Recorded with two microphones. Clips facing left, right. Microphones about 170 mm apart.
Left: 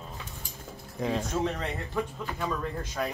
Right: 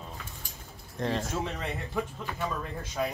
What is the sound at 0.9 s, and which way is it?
Speech, 5° left (ahead or behind).